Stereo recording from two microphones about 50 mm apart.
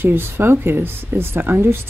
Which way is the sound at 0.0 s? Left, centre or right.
Right.